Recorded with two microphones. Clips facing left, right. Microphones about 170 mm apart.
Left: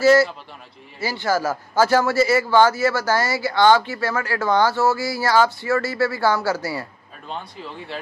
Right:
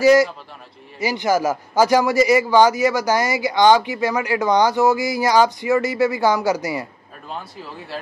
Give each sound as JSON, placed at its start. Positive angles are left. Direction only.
{"t": 0.0, "sound": "a man's voice", "side_deg": -15}
{"t": 7.2, "sound": "speech", "side_deg": -5}